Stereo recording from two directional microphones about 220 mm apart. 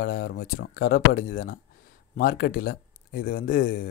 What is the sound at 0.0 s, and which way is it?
Speech, 45° left (ahead or behind).